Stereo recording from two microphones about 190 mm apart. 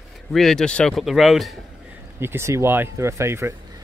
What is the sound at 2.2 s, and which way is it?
Speech, 15° right (ahead or behind).